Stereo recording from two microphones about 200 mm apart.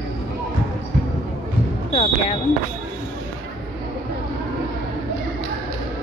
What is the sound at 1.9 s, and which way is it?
Basketball bounce, 30° left (ahead or behind).